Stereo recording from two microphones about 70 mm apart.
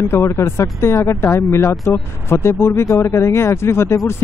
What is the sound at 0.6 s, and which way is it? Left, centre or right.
Speech, left.